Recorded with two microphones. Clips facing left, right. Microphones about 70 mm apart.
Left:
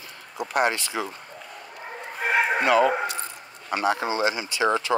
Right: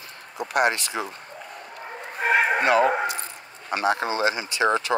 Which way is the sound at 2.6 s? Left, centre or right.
Right.